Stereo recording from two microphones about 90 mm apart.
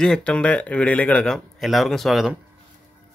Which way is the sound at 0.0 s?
10° left (ahead or behind).